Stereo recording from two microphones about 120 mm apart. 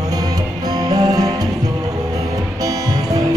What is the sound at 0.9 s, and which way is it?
Music, 30° right (ahead or behind).